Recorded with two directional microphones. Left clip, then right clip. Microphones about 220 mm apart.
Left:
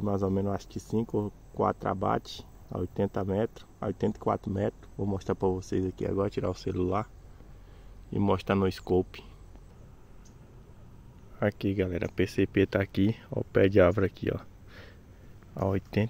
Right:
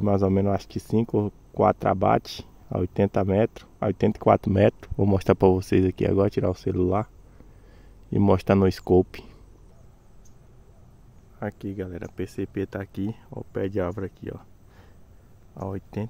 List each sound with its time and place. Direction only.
0.0 s speech: 35° right (ahead or behind)
8.1 s speech: 40° right (ahead or behind)
11.3 s speech: 5° left (ahead or behind)